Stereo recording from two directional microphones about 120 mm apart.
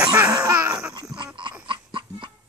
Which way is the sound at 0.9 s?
40° right (ahead or behind).